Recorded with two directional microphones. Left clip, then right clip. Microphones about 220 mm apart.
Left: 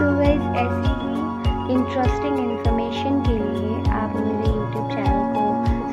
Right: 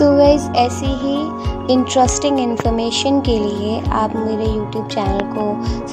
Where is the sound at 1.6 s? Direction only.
35° right (ahead or behind).